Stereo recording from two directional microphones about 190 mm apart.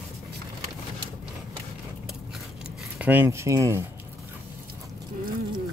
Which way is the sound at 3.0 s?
10° right (ahead or behind).